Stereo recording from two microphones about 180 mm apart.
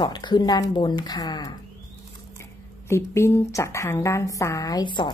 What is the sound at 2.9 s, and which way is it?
Speech, 15° left (ahead or behind).